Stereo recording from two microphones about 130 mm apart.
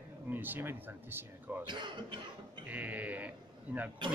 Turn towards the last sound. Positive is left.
turn(degrees=-10)  # may be behind; listen again after turning